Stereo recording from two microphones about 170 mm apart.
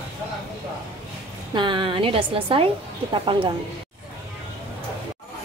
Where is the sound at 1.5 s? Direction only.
30° right (ahead or behind).